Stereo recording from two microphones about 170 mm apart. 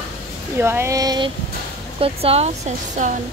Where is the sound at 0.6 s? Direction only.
15° right (ahead or behind).